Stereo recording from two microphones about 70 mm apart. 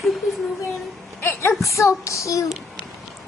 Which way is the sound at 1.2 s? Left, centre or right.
Left.